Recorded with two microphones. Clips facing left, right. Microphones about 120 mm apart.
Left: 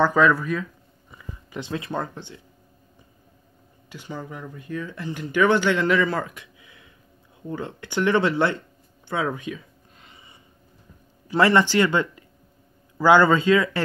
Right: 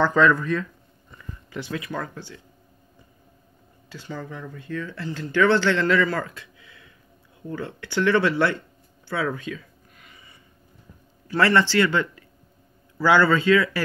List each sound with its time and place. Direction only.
0.0 s speech: 10° left (ahead or behind)
1.1 s speech: 20° left (ahead or behind)
3.9 s a man's voice: 15° left (ahead or behind)